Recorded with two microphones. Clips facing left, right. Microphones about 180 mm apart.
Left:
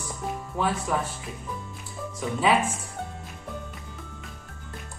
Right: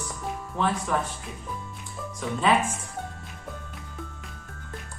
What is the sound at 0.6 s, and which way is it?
Speech, 10° left (ahead or behind).